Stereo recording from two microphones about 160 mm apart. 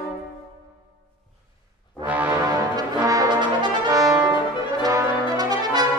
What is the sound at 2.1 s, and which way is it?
Music, 10° right (ahead or behind).